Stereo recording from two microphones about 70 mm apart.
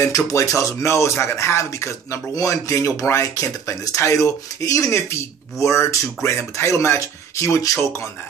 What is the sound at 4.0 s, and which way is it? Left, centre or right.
A man's voice, left.